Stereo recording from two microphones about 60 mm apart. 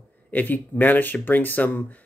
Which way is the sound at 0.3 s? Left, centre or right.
Left.